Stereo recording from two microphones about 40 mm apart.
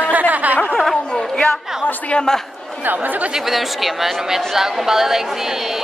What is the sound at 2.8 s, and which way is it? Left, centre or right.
Speech, right.